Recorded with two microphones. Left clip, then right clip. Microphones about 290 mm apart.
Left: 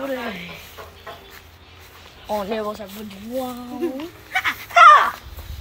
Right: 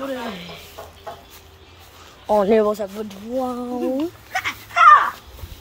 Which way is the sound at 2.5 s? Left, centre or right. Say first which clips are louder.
Right 9 dB; right.